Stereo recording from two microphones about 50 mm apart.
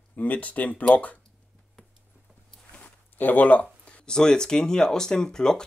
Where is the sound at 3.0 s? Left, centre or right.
Left.